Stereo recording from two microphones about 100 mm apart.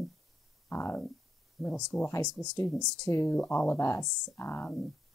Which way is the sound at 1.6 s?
Centre (ahead or behind).